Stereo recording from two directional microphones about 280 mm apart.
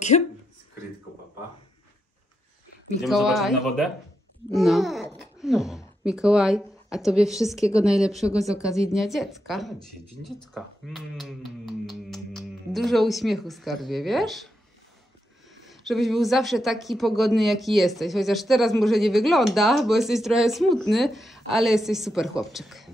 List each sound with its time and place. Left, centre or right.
0.1 s speech: left
3.0 s speech: centre
15.6 s speech: centre